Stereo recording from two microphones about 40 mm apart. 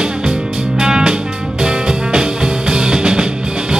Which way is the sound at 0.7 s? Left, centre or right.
Centre.